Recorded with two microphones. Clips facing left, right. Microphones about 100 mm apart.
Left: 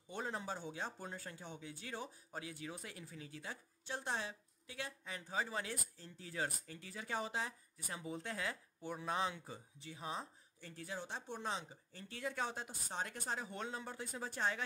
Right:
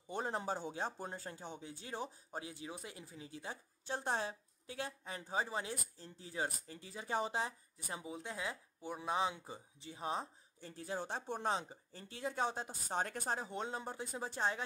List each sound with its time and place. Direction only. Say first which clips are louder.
0.1 s speech: right 4 dB; 35° right (ahead or behind)
8.0 s speech: left 1 dB; 10° right (ahead or behind); by 11.0 s 30° right (ahead or behind)
11.0 s speech: right 5 dB; 50° right (ahead or behind); by 12.7 s 30° right (ahead or behind)
12.9 s speech: right 5 dB; 45° right (ahead or behind)
13.4 s speech: right 3 dB; 25° right (ahead or behind)